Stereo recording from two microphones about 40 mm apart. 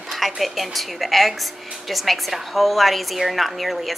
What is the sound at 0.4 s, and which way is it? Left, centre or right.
A woman's voice, centre.